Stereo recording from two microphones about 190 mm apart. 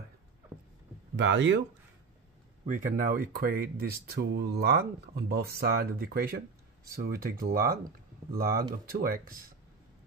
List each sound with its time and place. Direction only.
1.1 s speech: 75° right (ahead or behind)
2.6 s speech: 45° right (ahead or behind)